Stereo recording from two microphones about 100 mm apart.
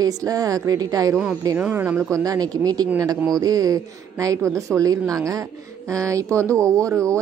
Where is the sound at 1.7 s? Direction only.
20° right (ahead or behind).